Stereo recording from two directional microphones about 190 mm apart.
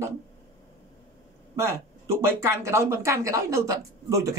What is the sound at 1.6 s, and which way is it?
A man's voice, 15° right (ahead or behind).